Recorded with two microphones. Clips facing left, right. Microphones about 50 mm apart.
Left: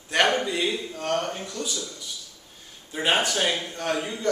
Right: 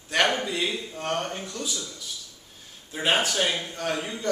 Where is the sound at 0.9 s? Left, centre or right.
Right.